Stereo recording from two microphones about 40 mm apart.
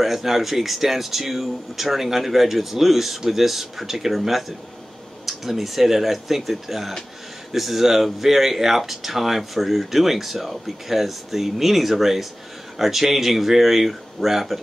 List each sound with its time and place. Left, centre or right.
0.0 s speech: centre